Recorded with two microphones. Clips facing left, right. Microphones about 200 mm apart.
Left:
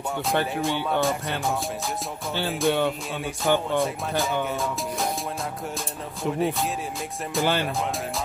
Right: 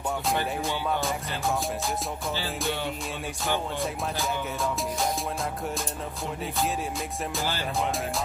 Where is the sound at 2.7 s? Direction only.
60° left (ahead or behind).